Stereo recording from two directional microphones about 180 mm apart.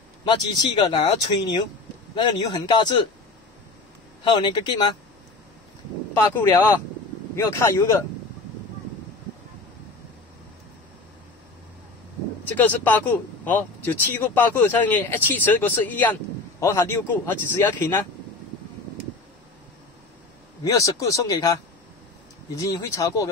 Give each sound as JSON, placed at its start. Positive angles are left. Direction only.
{"t": 0.2, "sound": "speech", "side_deg": 25}
{"t": 4.2, "sound": "speech", "side_deg": 25}
{"t": 6.1, "sound": "speech", "side_deg": 15}
{"t": 12.4, "sound": "speech", "side_deg": 10}
{"t": 20.6, "sound": "speech", "side_deg": 15}